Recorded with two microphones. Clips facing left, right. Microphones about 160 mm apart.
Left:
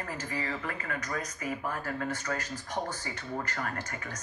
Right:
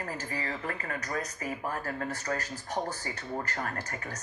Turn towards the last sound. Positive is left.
turn(degrees=-40)  # may be behind; listen again after turning